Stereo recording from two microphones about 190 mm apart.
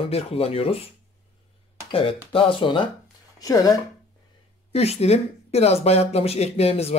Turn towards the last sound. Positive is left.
turn(degrees=35)  # may be behind; listen again after turning